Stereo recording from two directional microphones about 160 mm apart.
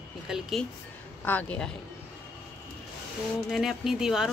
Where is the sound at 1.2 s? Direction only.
10° left (ahead or behind).